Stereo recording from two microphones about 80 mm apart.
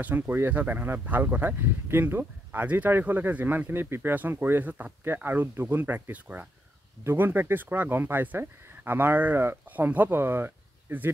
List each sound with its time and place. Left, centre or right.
0.0 s speech: right